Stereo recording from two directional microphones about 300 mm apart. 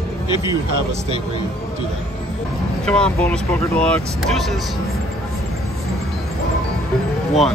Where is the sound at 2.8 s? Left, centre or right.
Centre.